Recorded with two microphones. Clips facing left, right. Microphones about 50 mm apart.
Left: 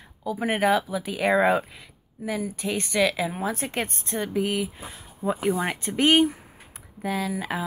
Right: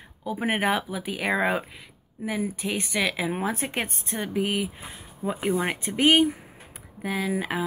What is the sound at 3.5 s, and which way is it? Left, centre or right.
Speech, centre.